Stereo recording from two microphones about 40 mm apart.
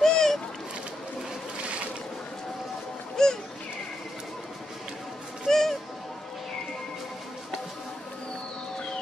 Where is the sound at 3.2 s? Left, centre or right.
Centre.